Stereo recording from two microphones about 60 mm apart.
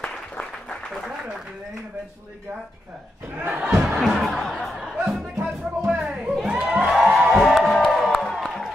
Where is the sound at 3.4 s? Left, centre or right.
Right.